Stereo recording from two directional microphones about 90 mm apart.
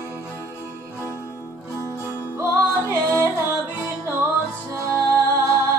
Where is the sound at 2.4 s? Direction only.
30° right (ahead or behind).